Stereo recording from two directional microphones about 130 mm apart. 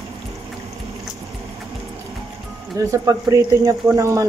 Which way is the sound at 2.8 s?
25° right (ahead or behind).